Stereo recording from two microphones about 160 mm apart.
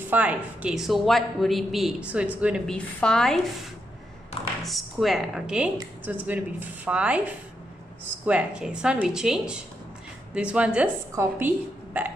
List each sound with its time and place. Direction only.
0.0 s a woman's voice: 10° right (ahead or behind)
2.6 s a woman's voice: 5° left (ahead or behind)
4.6 s a woman's voice: centre (ahead or behind)